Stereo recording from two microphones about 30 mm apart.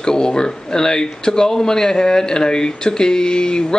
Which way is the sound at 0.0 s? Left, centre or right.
Left.